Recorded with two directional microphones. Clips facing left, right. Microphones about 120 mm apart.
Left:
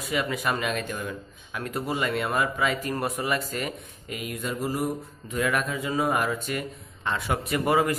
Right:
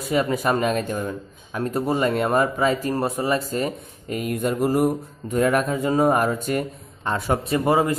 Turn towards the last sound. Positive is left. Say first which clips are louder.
# right 4 dB
turn(degrees=-25)  # may be behind; listen again after turning